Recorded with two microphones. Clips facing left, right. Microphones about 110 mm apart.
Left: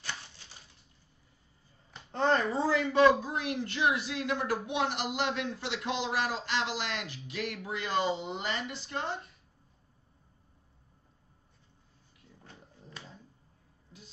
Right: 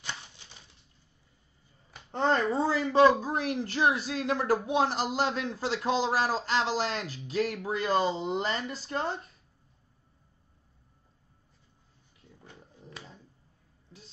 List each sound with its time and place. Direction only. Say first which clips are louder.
2.1 s a child's voice: right 1 dB; 25° right (ahead or behind)